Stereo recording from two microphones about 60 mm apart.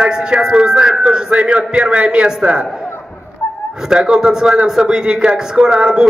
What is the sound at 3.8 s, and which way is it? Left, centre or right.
A man's voice, centre.